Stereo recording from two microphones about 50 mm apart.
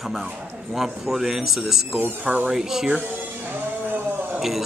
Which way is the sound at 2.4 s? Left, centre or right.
Centre.